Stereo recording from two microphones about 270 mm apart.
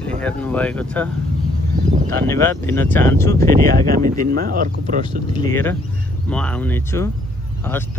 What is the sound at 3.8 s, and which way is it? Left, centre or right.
Speech, right.